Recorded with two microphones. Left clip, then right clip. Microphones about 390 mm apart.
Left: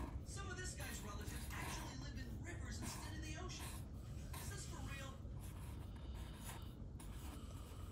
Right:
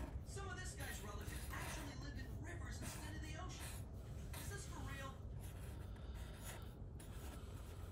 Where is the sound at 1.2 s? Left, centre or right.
Centre.